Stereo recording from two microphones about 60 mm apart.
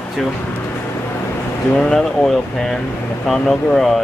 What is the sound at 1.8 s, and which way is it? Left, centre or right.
Speech, centre.